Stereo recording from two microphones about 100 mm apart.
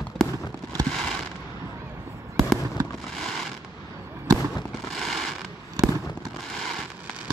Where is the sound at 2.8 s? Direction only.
35° right (ahead or behind).